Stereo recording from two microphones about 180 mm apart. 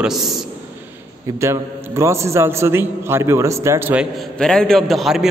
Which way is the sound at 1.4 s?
15° right (ahead or behind).